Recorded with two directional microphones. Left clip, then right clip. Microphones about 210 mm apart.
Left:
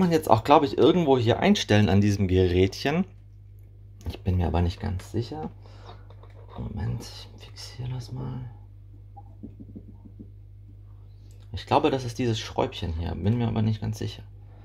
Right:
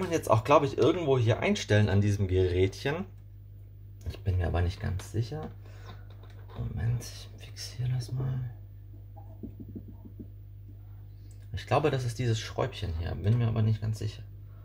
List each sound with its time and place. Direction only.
0.1 s speech: 45° left (ahead or behind)
4.1 s speech: 40° left (ahead or behind)
7.0 s speech: 35° left (ahead or behind)
11.5 s speech: 40° left (ahead or behind)